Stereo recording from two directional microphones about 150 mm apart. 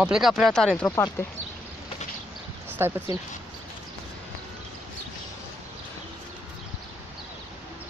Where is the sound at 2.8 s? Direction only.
15° right (ahead or behind).